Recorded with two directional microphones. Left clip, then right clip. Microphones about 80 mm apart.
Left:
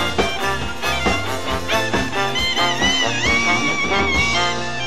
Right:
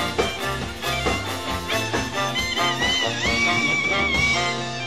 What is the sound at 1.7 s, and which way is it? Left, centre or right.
Music, left.